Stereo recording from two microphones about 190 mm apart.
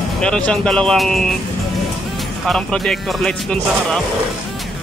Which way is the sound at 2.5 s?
5° left (ahead or behind).